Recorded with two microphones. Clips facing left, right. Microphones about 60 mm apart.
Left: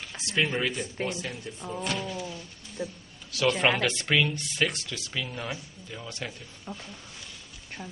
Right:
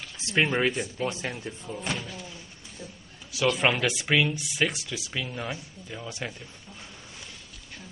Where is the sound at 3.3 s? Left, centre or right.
Centre.